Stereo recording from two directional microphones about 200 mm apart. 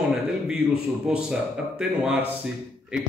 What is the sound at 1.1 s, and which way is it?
A man's voice, 5° right (ahead or behind).